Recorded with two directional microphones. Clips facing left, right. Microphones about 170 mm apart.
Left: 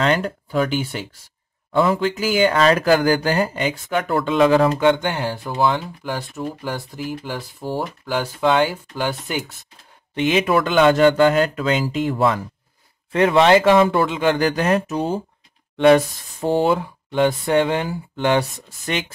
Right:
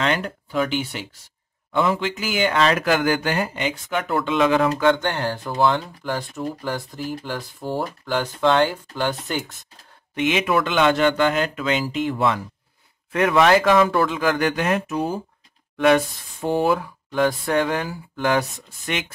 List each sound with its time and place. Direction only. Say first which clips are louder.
0.0 s speech: left 4 dB; 40° left (ahead or behind)
4.7 s speech: left 2 dB; 15° left (ahead or behind)
10.1 s speech: left 3 dB; 35° left (ahead or behind)
13.1 s speech: left 3 dB; 30° left (ahead or behind)